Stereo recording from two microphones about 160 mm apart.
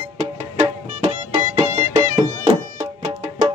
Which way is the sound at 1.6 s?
25° right (ahead or behind).